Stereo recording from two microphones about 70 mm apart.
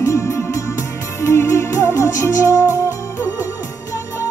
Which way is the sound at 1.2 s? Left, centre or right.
Left.